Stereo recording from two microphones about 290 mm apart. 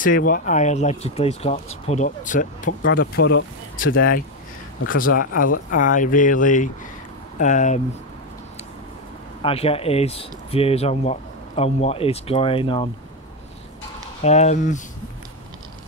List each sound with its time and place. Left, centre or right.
0.0 s speech: left
2.8 s speech: left
9.4 s speech: centre
14.2 s speech: left